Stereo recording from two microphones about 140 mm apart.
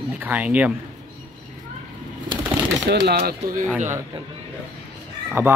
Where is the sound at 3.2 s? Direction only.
90° right.